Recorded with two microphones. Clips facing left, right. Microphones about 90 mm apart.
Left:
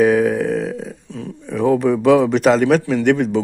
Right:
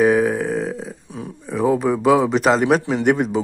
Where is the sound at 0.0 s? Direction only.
Centre (ahead or behind).